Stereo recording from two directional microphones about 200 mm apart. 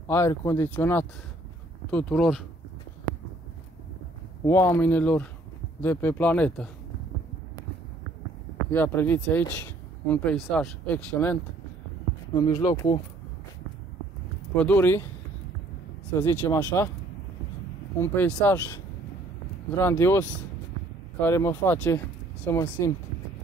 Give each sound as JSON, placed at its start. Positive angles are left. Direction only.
{"t": 0.1, "sound": "speech", "side_deg": 15}
{"t": 4.5, "sound": "speech", "side_deg": 10}
{"t": 8.7, "sound": "speech", "side_deg": 10}
{"t": 12.4, "sound": "speech", "side_deg": 20}
{"t": 14.5, "sound": "speech", "side_deg": 10}
{"t": 16.2, "sound": "speech", "side_deg": 10}
{"t": 18.0, "sound": "speech", "side_deg": 10}
{"t": 19.8, "sound": "speech", "side_deg": 10}